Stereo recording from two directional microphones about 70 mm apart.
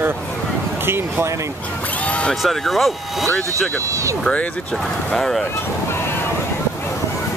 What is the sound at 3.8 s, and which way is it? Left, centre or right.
Speech, right.